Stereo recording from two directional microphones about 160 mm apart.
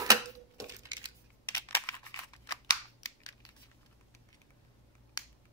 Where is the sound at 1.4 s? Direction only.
15° left (ahead or behind).